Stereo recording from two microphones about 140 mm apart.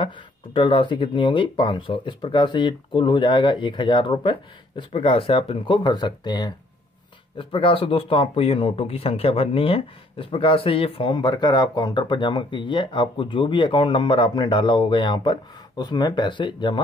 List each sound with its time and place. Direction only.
0.0 s speech: 35° left (ahead or behind)